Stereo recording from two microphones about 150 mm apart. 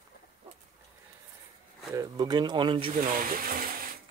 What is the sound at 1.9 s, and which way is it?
Speech, 25° right (ahead or behind).